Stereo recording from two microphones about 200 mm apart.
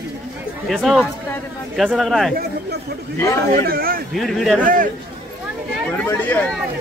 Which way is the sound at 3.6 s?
50° right (ahead or behind).